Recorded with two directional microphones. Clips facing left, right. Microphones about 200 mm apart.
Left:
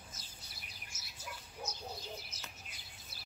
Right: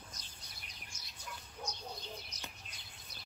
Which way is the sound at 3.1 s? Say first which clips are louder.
Right 2 dB; 5° left (ahead or behind).